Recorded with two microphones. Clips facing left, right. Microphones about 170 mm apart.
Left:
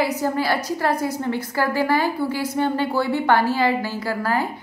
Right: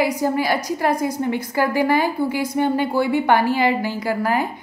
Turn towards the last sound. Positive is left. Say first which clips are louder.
# right 2 dB
turn(degrees=-15)  # may be behind; listen again after turning